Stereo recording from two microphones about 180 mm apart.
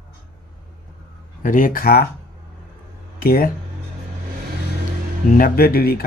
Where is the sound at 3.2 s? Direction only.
55° left (ahead or behind).